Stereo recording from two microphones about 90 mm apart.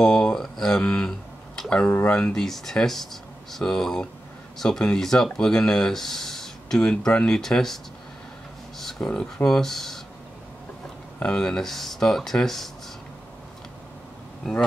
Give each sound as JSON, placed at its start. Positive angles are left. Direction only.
{"t": 0.0, "sound": "speech", "side_deg": 5}
{"t": 1.9, "sound": "speech", "side_deg": 20}
{"t": 2.1, "sound": "speech", "side_deg": 5}
{"t": 11.1, "sound": "speech", "side_deg": 10}